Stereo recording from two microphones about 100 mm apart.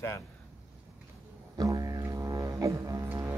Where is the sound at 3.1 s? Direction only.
20° right (ahead or behind).